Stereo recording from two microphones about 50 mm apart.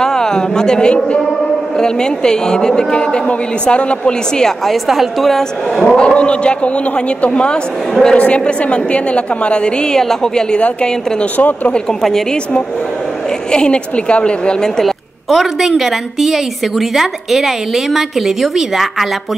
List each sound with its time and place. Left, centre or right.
0.0 s a woman's voice: centre
4.8 s a woman's voice: centre
5.9 s a woman's voice: left
7.9 s a woman's voice: centre
8.2 s a woman's voice: left
11.3 s speech: left
13.5 s a woman's voice: centre
14.8 s a woman's voice: centre